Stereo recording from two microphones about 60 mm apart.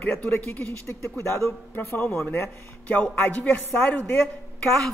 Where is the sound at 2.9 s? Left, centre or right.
Left.